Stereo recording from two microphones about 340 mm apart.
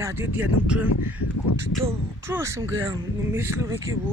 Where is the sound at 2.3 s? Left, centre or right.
Centre.